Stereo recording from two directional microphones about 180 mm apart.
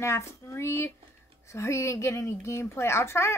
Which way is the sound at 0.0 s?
15° left (ahead or behind).